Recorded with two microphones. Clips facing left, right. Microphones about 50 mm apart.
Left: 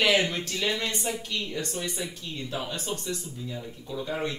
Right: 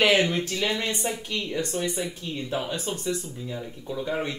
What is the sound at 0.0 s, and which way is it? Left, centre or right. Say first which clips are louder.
A woman's voice: right 3 dB; centre.